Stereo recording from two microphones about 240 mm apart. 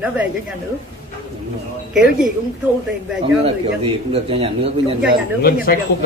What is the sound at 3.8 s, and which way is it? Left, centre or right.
A man's voice, right.